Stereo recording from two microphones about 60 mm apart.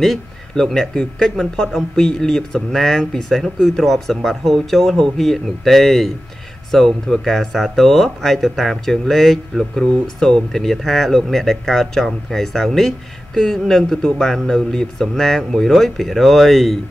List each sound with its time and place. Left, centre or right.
0.0 s speech: centre